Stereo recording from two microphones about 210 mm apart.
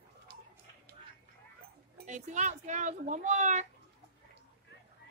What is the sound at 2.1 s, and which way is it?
Speech, 35° right (ahead or behind).